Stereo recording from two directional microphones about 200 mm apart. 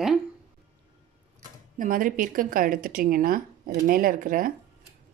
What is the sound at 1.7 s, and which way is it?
Speech, 40° right (ahead or behind).